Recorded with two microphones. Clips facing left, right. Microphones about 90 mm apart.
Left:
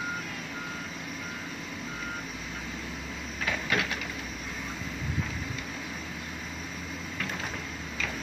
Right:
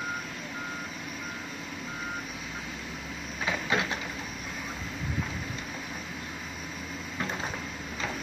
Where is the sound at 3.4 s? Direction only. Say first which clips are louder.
Right 1 dB; 25° right (ahead or behind).